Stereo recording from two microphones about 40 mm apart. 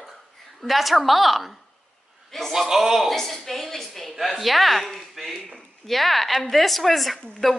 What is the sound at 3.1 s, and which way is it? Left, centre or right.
A woman's voice, centre.